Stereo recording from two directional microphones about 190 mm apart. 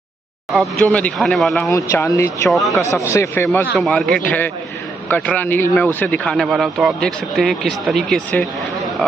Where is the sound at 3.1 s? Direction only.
15° left (ahead or behind).